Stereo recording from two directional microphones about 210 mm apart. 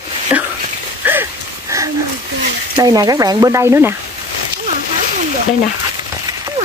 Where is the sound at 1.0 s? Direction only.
10° right (ahead or behind).